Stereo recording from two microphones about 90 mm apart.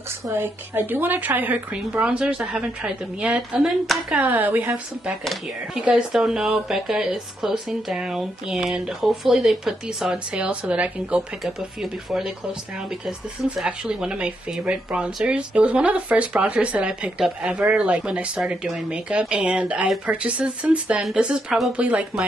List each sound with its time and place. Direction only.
0.3 s speech: 25° right (ahead or behind); by 3.7 s 10° right (ahead or behind)
4.1 s a woman's voice: 20° right (ahead or behind)
5.2 s speech: centre (ahead or behind)
11.4 s speech: centre (ahead or behind)
13.7 s speech: 10° right (ahead or behind)